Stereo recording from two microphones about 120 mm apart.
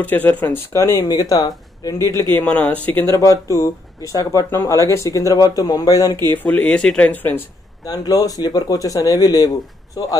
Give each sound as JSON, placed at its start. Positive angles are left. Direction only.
{"t": 0.0, "sound": "speech", "side_deg": 15}
{"t": 0.7, "sound": "speech", "side_deg": 25}
{"t": 2.4, "sound": "speech", "side_deg": 10}
{"t": 3.2, "sound": "speech", "side_deg": 25}
{"t": 6.2, "sound": "speech", "side_deg": 15}
{"t": 7.8, "sound": "speech", "side_deg": 30}